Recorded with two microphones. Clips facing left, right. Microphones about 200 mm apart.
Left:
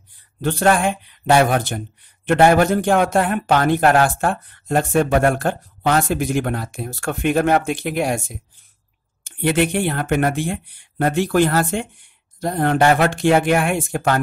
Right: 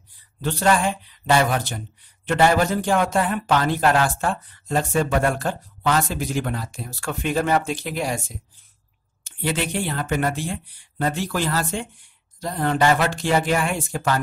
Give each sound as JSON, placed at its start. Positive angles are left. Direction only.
{"t": 0.4, "sound": "speech", "side_deg": 50}